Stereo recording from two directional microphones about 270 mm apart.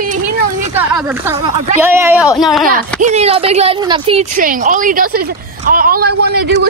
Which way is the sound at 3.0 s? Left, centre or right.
Right.